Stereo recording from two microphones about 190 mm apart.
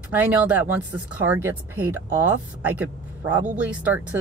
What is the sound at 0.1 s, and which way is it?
Speech, 10° right (ahead or behind).